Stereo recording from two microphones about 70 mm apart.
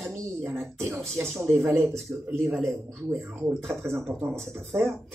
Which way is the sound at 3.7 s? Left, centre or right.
Right.